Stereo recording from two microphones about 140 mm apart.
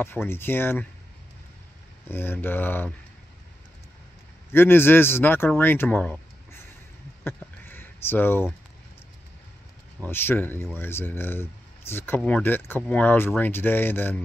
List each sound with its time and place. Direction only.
0.0 s speech: 15° left (ahead or behind)
2.0 s speech: 15° left (ahead or behind)
4.5 s speech: 15° left (ahead or behind)
7.2 s a sound: 15° left (ahead or behind)
10.0 s speech: 15° left (ahead or behind)